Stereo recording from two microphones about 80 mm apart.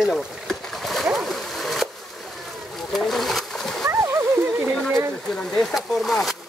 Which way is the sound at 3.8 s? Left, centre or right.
Right.